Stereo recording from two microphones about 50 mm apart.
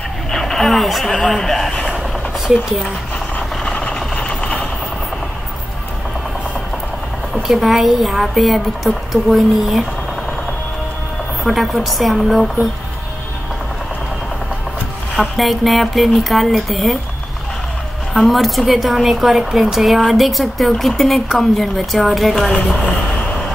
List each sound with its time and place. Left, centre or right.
0.3 s speech: centre
3.3 s vehicle: left
7.4 s speech: centre
11.4 s speech: centre
15.1 s speech: centre
18.1 s speech: centre